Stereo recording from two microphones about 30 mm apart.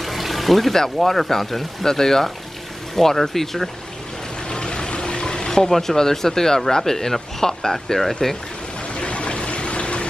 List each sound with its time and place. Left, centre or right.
0.0 s water: centre
0.9 s speech: centre
4.5 s vehicle: left
5.7 s speech: centre
8.9 s a sound: left